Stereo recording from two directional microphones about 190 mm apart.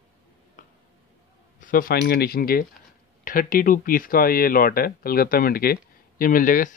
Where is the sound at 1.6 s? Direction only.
50° left (ahead or behind).